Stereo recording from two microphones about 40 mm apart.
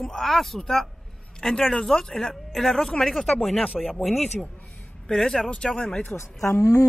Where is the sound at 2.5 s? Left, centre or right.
Centre.